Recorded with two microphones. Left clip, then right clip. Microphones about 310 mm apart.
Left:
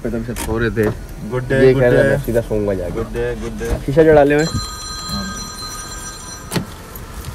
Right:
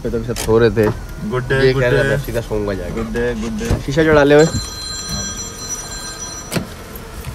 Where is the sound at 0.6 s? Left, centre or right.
Centre.